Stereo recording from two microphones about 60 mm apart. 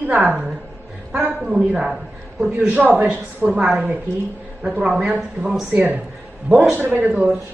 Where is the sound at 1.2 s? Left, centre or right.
Centre.